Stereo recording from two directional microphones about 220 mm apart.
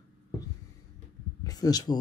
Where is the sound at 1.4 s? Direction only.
15° left (ahead or behind).